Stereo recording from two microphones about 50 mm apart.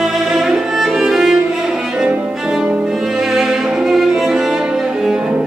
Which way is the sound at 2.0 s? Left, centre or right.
Centre.